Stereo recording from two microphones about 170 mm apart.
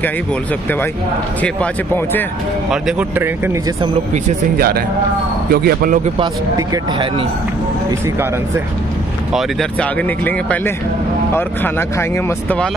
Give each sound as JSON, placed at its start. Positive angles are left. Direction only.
{"t": 1.4, "sound": "speech", "side_deg": 10}
{"t": 2.7, "sound": "speech", "side_deg": -10}
{"t": 4.6, "sound": "speech", "side_deg": -60}
{"t": 6.5, "sound": "speech", "side_deg": -25}
{"t": 9.3, "sound": "speech", "side_deg": 5}